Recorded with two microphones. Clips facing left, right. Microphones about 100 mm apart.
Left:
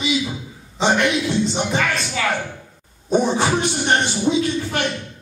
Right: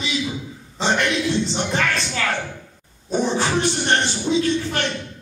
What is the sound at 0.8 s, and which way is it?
A man's voice, 5° left (ahead or behind).